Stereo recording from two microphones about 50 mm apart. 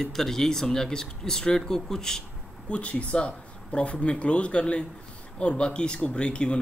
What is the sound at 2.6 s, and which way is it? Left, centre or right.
Speech, left.